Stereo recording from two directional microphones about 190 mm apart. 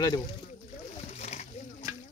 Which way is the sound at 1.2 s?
35° left (ahead or behind).